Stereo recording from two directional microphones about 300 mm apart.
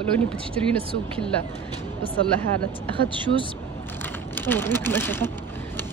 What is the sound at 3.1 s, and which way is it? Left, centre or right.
Speech, centre.